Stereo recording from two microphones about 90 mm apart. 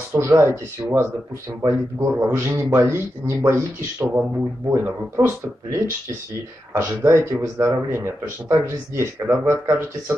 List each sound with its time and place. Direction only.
0.1 s a man's voice: 30° right (ahead or behind)
6.7 s a man's voice: 30° right (ahead or behind)